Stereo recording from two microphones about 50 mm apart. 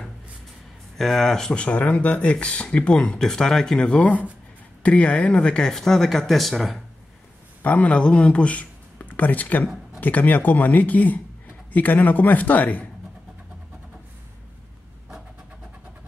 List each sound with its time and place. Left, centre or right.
0.9 s speech: centre
1.5 s speech: left
3.2 s speech: centre
5.7 s speech: centre
7.6 s speech: left